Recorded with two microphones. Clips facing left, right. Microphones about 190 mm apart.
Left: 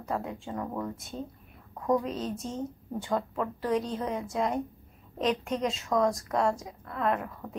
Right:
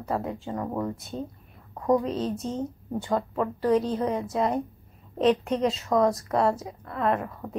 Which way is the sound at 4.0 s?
40° right (ahead or behind).